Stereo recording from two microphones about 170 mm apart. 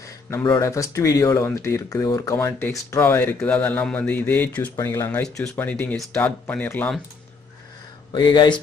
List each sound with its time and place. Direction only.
0.0 s speech: 15° left (ahead or behind)
8.1 s speech: 25° left (ahead or behind)